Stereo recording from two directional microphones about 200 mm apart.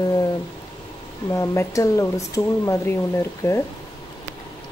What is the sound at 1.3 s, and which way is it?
Speech, 15° left (ahead or behind).